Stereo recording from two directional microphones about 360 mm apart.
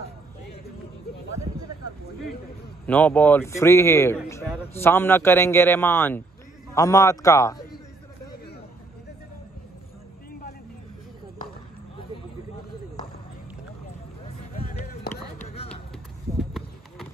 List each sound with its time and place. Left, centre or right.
2.9 s a man's voice: centre
14.2 s a sound: left
15.4 s music: centre